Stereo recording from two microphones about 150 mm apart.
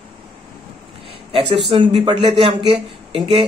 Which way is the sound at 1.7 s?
35° right (ahead or behind).